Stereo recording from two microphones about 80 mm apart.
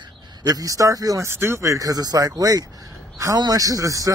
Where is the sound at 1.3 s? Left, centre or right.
Right.